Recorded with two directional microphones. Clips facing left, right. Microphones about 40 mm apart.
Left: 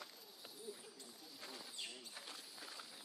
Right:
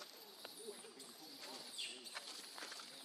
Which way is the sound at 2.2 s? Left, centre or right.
Right.